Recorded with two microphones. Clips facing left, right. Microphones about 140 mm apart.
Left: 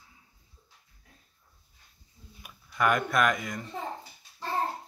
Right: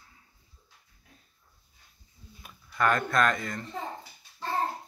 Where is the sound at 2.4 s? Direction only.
10° left (ahead or behind).